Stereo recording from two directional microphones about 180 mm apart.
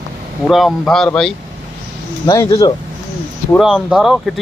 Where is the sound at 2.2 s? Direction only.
20° left (ahead or behind).